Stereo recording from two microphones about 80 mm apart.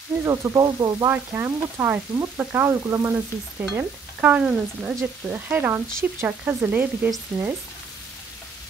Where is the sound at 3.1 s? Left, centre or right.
Right.